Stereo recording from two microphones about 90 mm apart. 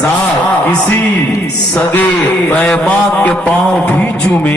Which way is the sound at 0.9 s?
25° left (ahead or behind).